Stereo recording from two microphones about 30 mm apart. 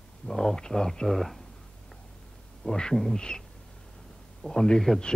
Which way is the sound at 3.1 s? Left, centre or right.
Left.